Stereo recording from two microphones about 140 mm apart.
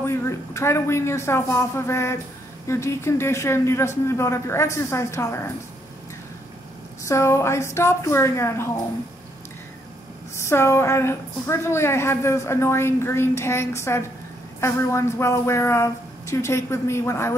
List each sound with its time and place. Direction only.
0.0 s a woman's voice: 20° left (ahead or behind)
7.1 s a woman's voice: 20° left (ahead or behind)
10.3 s a woman's voice: 20° left (ahead or behind)